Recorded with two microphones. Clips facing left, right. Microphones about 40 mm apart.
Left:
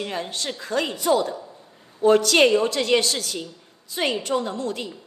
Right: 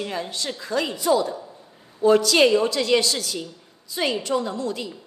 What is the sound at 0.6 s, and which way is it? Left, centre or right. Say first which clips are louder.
A woman's voice: even; left.